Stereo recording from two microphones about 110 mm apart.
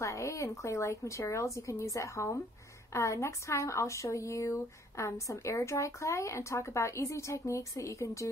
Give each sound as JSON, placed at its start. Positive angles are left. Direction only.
{"t": 0.0, "sound": "a woman's voice", "side_deg": 30}